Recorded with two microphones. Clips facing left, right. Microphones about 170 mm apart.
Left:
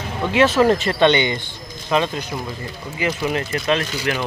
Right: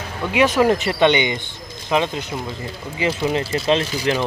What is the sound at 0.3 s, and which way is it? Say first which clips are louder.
Speech: left 1 dB; 15° right (ahead or behind).